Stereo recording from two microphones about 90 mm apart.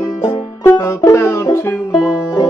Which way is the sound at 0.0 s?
30° left (ahead or behind).